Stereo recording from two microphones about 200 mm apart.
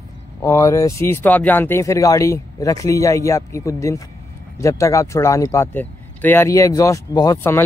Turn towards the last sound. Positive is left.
turn(degrees=15)  # may be behind; listen again after turning